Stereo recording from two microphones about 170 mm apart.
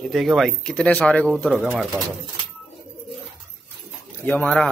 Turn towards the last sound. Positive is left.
turn(degrees=5)  # may be behind; listen again after turning